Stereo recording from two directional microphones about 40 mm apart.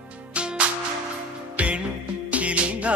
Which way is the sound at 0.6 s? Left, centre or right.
Right.